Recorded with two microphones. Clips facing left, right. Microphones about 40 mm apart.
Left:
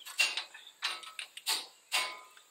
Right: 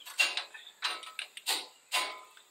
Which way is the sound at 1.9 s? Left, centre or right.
Centre.